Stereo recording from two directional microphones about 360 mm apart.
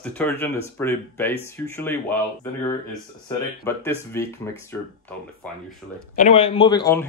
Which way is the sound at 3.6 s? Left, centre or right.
Centre.